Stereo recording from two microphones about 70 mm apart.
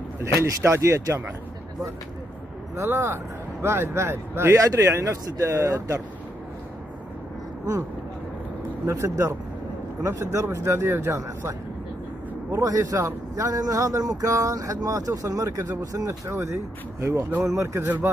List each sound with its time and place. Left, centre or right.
0.3 s speech: right
2.7 s speech: right
8.8 s speech: right
12.6 s a man's voice: right
16.3 s speech: right
17.8 s speech: right